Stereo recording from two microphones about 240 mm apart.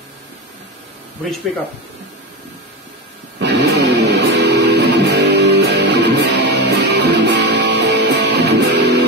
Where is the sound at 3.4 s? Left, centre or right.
Right.